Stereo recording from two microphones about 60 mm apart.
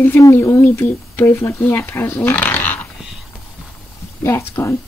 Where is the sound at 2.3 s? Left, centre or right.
Left.